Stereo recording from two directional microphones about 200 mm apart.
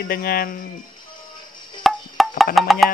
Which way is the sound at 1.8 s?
Centre (ahead or behind).